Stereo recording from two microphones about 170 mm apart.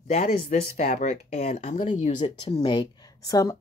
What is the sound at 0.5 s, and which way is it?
Speech, 45° left (ahead or behind).